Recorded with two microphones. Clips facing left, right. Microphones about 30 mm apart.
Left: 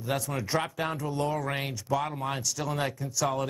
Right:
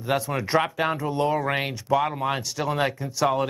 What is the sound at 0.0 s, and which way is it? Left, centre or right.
Speech, right.